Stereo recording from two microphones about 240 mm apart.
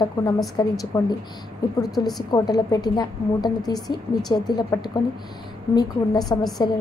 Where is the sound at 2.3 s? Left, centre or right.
Centre.